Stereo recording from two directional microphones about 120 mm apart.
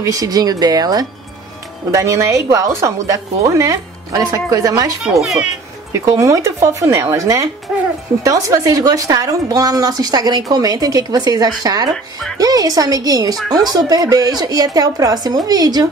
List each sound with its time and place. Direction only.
0.0 s a woman's voice: 30° right (ahead or behind)
5.2 s a child's voice: centre (ahead or behind)
5.9 s a woman's voice: 25° right (ahead or behind)
13.4 s a child's voice: centre (ahead or behind)
13.7 s a woman's voice: 30° right (ahead or behind)